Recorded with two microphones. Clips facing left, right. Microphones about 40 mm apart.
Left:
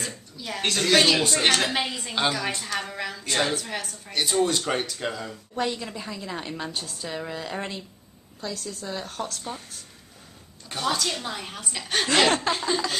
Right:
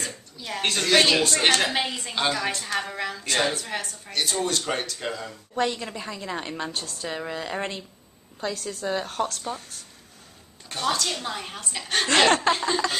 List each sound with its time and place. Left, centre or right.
0.0 s a woman's voice: centre
5.5 s a woman's voice: centre
6.7 s a woman's voice: centre
7.1 s a woman's voice: centre
8.4 s a woman's voice: right
9.3 s a woman's voice: centre
10.7 s a woman's voice: centre